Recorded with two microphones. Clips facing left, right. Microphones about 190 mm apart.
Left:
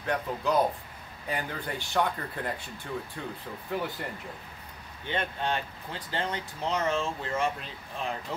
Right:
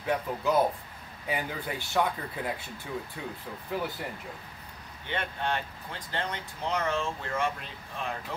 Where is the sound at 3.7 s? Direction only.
Centre (ahead or behind).